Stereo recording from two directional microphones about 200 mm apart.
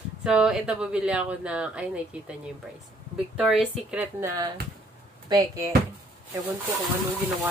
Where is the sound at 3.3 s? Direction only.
5° right (ahead or behind); by 5.6 s 20° right (ahead or behind).